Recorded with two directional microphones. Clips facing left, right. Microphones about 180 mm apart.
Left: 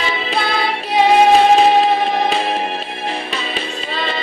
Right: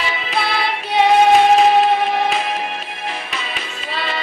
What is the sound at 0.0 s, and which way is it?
Music, 30° left (ahead or behind).